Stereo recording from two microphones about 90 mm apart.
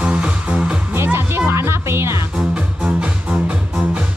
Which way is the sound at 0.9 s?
25° right (ahead or behind).